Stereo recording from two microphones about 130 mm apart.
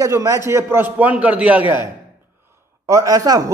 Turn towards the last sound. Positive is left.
turn(degrees=-30)  # may be behind; listen again after turning